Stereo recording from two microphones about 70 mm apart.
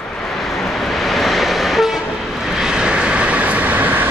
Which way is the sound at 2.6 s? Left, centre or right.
Centre.